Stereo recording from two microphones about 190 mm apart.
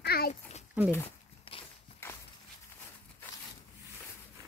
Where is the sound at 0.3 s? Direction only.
35° left (ahead or behind).